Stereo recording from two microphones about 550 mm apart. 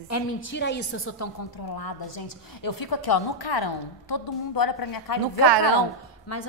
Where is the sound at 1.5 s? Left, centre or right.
Left.